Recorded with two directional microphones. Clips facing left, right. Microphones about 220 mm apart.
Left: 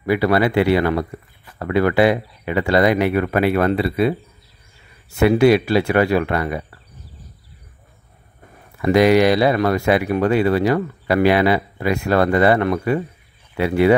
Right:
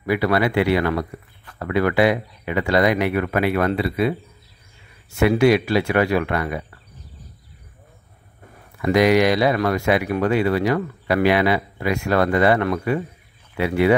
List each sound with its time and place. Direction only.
0.0 s speech: 30° left (ahead or behind)
5.4 s speech: 30° left (ahead or behind)
8.8 s speech: 30° left (ahead or behind)